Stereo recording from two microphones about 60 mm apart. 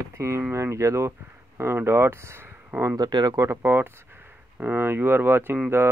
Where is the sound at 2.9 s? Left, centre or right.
Right.